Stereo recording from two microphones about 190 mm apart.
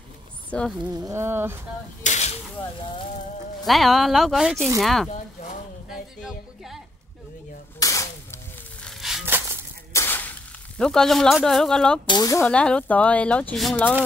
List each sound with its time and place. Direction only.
0.5 s speech: 5° left (ahead or behind)
0.8 s speech: 15° right (ahead or behind)
2.0 s speech: 35° left (ahead or behind)
3.6 s speech: centre (ahead or behind)
6.2 s music: centre (ahead or behind)
7.8 s a sound: 15° left (ahead or behind)
8.8 s crushing: centre (ahead or behind)
9.9 s a sound: 10° left (ahead or behind)
10.8 s speech: centre (ahead or behind)
12.1 s speech: 20° left (ahead or behind)
12.4 s speech: 5° left (ahead or behind)